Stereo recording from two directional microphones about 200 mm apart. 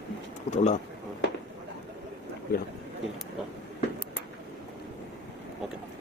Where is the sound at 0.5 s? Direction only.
35° left (ahead or behind).